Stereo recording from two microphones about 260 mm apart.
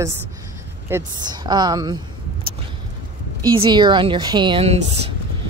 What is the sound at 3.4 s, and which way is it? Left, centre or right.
Speech, centre.